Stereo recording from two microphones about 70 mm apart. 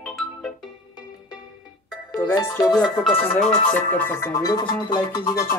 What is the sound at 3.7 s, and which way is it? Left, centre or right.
Speech, left.